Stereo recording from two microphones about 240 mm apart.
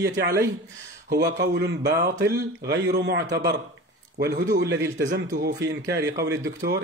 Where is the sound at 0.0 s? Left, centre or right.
Right.